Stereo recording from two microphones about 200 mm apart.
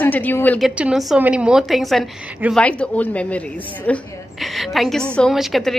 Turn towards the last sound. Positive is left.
turn(degrees=0)  # may be behind; listen again after turning